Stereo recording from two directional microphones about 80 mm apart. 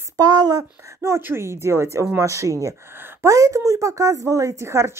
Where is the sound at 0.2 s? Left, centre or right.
Right.